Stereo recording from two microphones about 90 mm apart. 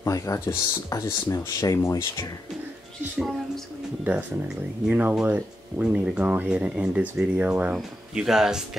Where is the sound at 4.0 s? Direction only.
20° right (ahead or behind).